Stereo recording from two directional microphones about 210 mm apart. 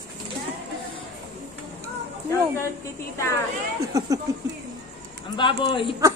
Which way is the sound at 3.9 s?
20° right (ahead or behind).